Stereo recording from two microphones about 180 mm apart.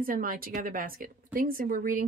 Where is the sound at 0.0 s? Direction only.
50° right (ahead or behind).